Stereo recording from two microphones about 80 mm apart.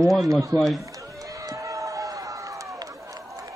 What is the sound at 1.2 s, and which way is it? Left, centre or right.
Run, right.